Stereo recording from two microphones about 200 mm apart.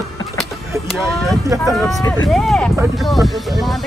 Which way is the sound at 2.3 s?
Centre (ahead or behind).